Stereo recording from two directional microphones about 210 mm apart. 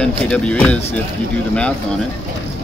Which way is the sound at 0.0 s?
5° left (ahead or behind).